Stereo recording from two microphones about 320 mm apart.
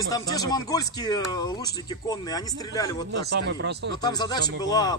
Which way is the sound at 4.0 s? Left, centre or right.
Centre.